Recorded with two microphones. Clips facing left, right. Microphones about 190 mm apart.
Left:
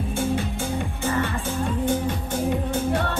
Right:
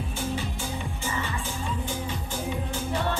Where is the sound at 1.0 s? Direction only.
60° left (ahead or behind).